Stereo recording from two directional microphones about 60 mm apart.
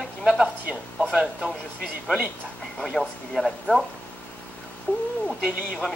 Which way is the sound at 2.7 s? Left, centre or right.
Centre.